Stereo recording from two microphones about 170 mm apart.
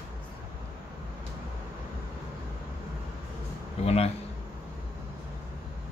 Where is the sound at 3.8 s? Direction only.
35° left (ahead or behind).